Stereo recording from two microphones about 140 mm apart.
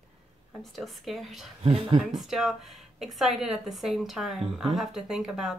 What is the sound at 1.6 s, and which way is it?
Speech, 40° right (ahead or behind).